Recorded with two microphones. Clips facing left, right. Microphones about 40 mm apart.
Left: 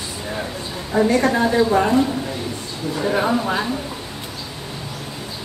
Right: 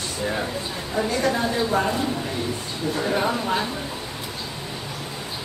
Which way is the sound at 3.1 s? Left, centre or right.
Centre.